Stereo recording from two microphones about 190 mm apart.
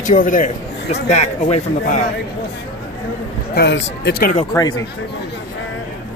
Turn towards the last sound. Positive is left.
turn(degrees=20)  # may be behind; listen again after turning